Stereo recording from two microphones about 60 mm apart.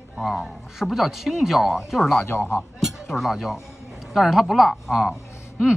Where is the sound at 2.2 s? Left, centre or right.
Left.